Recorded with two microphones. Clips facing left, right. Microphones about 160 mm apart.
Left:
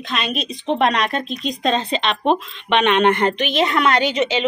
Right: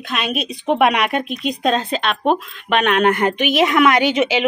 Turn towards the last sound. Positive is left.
turn(degrees=-10)  # may be behind; listen again after turning